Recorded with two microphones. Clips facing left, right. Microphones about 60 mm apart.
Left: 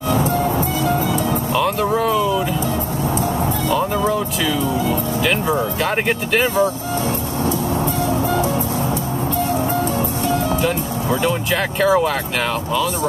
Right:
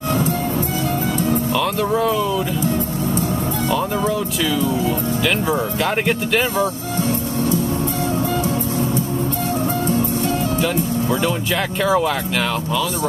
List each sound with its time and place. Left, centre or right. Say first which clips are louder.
1.8 s speech: left 1 dB; centre
5.9 s speech: even; centre
10.6 s music: right 1 dB; left
11.8 s speech: left 2 dB; centre